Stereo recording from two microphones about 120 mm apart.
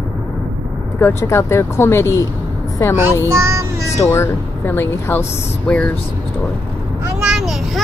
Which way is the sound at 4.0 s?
20° left (ahead or behind).